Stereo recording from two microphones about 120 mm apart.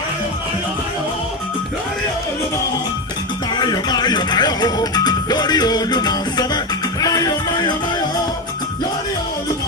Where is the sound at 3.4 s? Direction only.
35° left (ahead or behind).